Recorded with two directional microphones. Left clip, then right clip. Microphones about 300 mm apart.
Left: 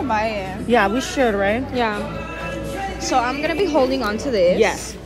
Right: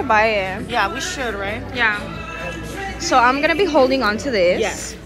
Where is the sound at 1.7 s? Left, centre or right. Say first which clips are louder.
Right 3 dB; centre.